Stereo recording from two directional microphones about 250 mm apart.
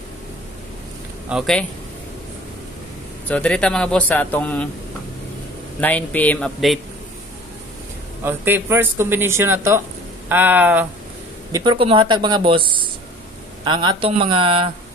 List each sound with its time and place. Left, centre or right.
1.3 s speech: centre
3.3 s speech: centre
5.8 s speech: centre
8.2 s a man's voice: centre
11.5 s speech: centre